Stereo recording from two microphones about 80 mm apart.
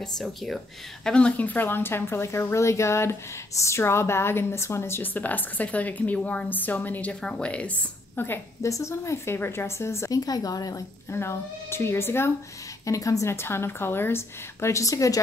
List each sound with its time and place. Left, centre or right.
0.2 s speech: centre
1.0 s speech: centre
8.2 s speech: left
8.6 s a woman's voice: left
11.1 s a woman's voice: left
12.8 s a woman's voice: left